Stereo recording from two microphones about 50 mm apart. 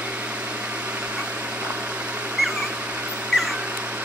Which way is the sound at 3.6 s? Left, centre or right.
Right.